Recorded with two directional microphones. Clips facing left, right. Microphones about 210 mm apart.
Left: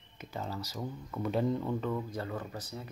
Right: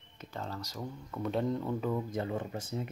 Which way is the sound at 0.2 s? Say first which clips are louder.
Left 1 dB; 5° left (ahead or behind).